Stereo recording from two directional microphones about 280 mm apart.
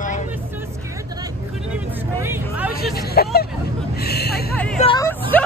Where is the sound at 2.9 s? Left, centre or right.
Left.